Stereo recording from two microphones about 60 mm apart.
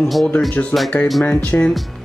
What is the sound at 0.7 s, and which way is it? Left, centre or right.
Speech, left.